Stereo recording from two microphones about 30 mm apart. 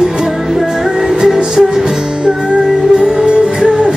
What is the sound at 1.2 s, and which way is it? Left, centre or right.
Music, centre.